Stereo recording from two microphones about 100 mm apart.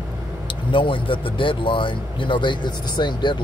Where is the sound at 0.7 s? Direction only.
55° left (ahead or behind).